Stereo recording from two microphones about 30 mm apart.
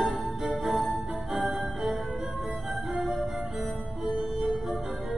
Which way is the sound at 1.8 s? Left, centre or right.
Centre.